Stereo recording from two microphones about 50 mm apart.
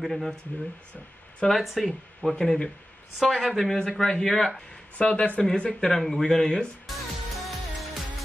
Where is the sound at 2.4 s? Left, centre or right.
Centre.